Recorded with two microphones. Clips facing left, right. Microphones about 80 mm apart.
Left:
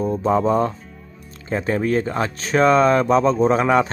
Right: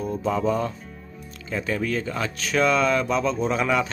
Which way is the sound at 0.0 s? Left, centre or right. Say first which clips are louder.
Left 5 dB; left.